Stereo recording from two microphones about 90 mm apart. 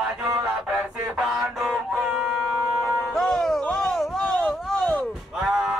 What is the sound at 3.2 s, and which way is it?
Music, 5° left (ahead or behind).